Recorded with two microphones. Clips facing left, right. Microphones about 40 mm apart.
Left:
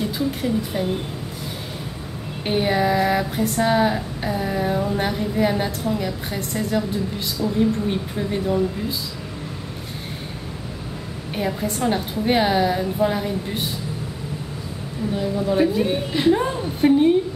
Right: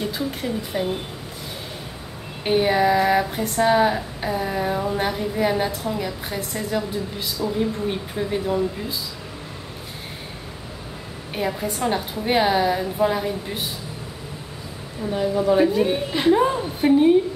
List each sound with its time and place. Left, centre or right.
0.0 s speech: centre
2.4 s speech: centre
11.3 s speech: centre
15.1 s a woman's voice: centre
15.5 s speech: centre